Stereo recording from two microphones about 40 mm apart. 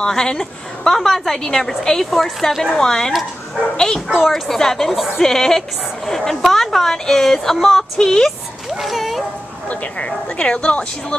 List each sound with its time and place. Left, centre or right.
0.0 s speech: centre
2.6 s speech: centre
6.0 s a sound: centre
6.5 s speech: centre
8.6 s speech: centre
9.7 s speech: left